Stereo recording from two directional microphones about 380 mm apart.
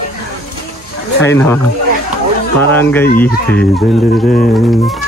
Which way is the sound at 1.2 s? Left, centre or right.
Centre.